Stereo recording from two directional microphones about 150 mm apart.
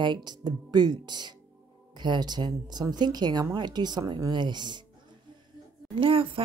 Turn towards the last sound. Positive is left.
turn(degrees=-35)  # may be behind; listen again after turning